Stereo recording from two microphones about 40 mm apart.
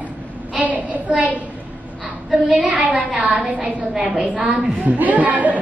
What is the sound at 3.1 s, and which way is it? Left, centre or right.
Speech, right.